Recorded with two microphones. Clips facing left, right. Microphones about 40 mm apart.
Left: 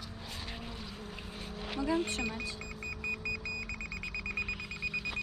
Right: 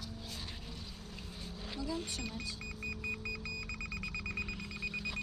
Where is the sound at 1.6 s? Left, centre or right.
Left.